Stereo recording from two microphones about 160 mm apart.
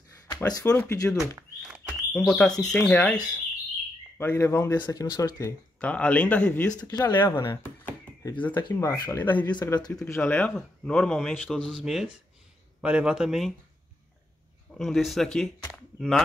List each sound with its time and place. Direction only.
0.3 s speech: 20° left (ahead or behind)
1.6 s a sound: 5° right (ahead or behind)
2.1 s speech: 5° left (ahead or behind)
4.2 s speech: 15° left (ahead or behind)
6.8 s speech: 25° left (ahead or behind)
7.1 s speech: 15° left (ahead or behind)
9.5 s speech: 25° left (ahead or behind); by 13.6 s centre (ahead or behind)
14.7 s speech: centre (ahead or behind)
15.7 s a sound: centre (ahead or behind)